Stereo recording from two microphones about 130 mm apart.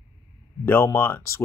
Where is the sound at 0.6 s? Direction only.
15° left (ahead or behind).